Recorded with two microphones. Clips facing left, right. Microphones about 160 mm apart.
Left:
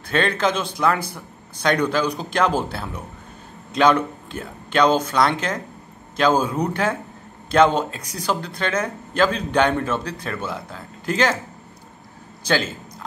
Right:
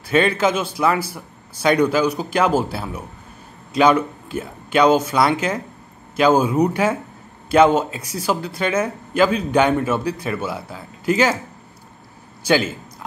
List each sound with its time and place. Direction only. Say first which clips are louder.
0.0 s a man's voice: right 3 dB; 10° right (ahead or behind)
12.4 s a man's voice: right 4 dB; 10° right (ahead or behind)